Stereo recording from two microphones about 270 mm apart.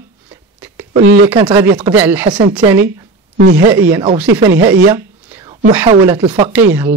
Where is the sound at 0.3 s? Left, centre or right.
Centre.